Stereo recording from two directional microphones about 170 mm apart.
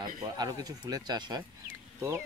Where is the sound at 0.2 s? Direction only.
25° right (ahead or behind).